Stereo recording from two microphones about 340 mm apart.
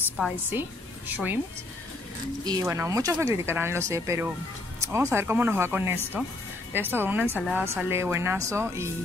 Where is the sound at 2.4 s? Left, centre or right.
Centre.